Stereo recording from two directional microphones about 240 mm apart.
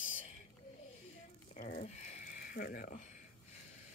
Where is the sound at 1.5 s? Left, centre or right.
Left.